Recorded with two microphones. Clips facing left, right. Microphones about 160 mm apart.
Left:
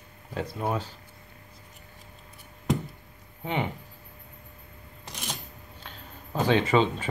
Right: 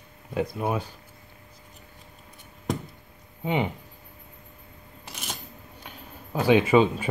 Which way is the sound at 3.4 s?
15° right (ahead or behind).